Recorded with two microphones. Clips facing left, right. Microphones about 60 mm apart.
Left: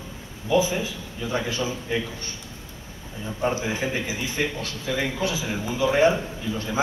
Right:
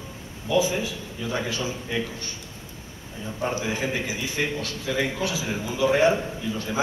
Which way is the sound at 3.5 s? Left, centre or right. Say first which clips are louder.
Left 1 dB; left.